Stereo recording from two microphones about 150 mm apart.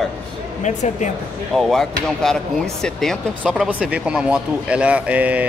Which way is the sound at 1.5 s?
Centre (ahead or behind).